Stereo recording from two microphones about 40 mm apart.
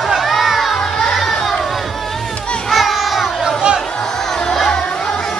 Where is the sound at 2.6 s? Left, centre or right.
Centre.